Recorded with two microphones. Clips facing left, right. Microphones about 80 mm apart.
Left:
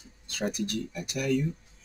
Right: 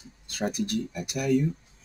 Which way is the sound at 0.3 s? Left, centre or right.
Centre.